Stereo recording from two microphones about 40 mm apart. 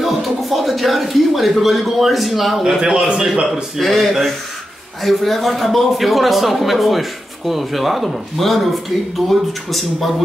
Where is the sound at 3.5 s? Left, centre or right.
Centre.